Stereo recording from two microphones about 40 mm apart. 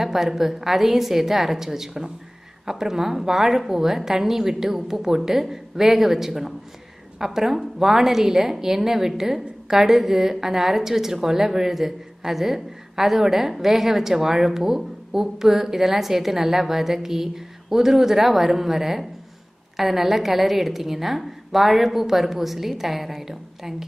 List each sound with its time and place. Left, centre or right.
0.0 s a woman's voice: centre